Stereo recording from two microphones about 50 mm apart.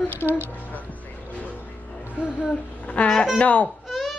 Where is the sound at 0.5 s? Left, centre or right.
Left.